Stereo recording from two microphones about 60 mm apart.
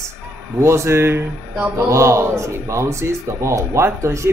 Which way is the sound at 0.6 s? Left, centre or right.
Right.